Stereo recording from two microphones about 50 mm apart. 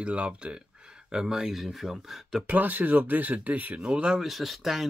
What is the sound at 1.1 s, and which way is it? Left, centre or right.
Speech, centre.